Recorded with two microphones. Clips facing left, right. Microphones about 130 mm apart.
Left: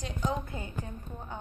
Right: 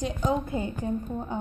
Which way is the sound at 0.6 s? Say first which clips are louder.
Right 11 dB; 25° right (ahead or behind).